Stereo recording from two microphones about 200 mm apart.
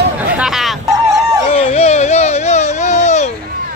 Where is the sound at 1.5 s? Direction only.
30° left (ahead or behind).